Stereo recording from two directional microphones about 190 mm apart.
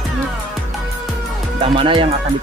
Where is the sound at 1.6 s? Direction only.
25° right (ahead or behind).